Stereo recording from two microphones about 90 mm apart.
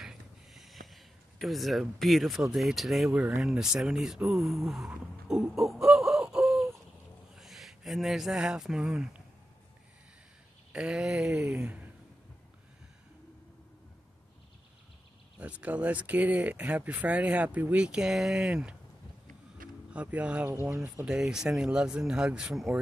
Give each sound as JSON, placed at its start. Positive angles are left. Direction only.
{"t": 0.0, "sound": "a sound", "side_deg": -5}
{"t": 3.3, "sound": "speech", "side_deg": -5}
{"t": 4.8, "sound": "a sound", "side_deg": -10}
{"t": 7.3, "sound": "speech", "side_deg": 0}
{"t": 10.7, "sound": "speech", "side_deg": -5}
{"t": 15.6, "sound": "speech", "side_deg": -15}
{"t": 19.9, "sound": "speech", "side_deg": -15}